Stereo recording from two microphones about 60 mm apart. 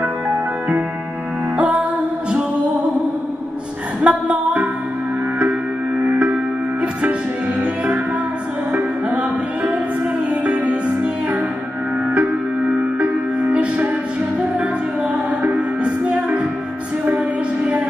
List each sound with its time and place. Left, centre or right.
1.6 s music: right
4.0 s a sound: centre
5.9 s music: right
10.4 s music: right
15.4 s music: centre